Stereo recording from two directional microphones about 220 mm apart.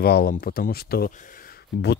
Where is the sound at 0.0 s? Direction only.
45° left (ahead or behind).